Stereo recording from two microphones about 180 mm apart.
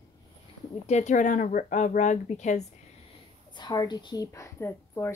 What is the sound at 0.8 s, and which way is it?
Speech, 40° left (ahead or behind).